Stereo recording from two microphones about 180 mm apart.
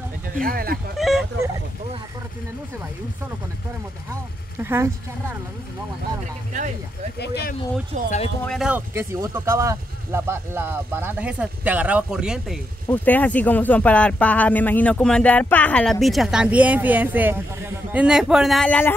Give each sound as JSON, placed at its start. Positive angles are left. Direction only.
{"t": 0.4, "sound": "speech", "side_deg": -55}
{"t": 0.9, "sound": "speech", "side_deg": 0}
{"t": 4.1, "sound": "speech", "side_deg": -15}
{"t": 7.2, "sound": "speech", "side_deg": 65}
{"t": 7.9, "sound": "speech", "side_deg": -45}
{"t": 8.4, "sound": "speech", "side_deg": 0}
{"t": 12.8, "sound": "speech", "side_deg": 10}